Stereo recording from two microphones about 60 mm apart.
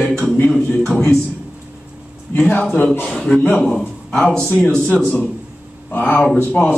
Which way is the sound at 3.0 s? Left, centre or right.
Centre.